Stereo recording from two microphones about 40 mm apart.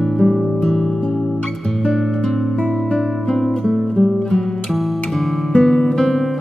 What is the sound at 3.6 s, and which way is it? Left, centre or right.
Music, centre.